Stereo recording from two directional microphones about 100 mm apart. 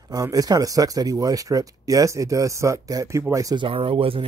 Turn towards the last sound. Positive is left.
turn(degrees=-65)  # may be behind; listen again after turning